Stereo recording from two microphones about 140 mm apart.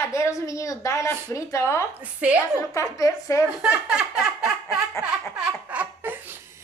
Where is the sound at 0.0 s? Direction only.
20° left (ahead or behind).